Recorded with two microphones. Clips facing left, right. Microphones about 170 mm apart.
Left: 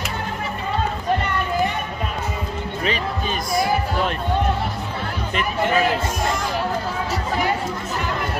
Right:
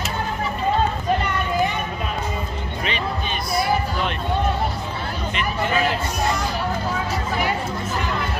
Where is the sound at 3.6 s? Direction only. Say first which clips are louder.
Left 1 dB; 40° left (ahead or behind).